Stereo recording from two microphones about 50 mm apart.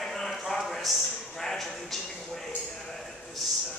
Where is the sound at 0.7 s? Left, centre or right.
Centre.